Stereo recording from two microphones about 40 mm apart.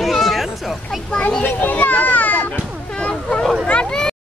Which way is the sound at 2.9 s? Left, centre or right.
Left.